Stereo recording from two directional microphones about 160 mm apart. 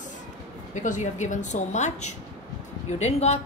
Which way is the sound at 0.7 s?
50° left (ahead or behind).